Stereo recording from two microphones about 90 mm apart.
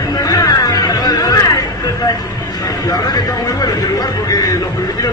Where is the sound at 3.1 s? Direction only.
45° left (ahead or behind).